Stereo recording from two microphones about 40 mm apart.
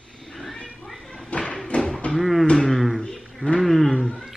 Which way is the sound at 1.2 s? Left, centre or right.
Left.